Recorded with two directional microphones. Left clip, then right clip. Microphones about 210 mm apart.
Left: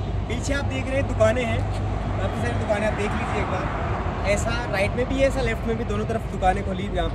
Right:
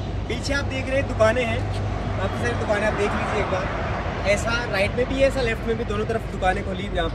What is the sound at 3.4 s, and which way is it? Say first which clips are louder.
Speech: right 2 dB; 40° right (ahead or behind).